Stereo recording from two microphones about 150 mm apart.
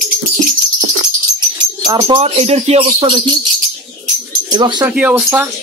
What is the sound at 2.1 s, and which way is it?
Speech, 40° right (ahead or behind).